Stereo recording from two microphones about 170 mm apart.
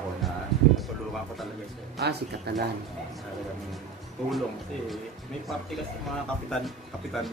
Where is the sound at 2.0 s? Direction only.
75° right (ahead or behind).